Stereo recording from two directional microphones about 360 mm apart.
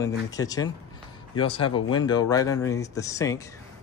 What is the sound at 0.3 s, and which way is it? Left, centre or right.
Speech, centre.